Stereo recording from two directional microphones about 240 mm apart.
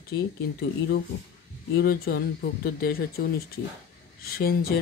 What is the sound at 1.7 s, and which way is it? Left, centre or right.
Speech, left.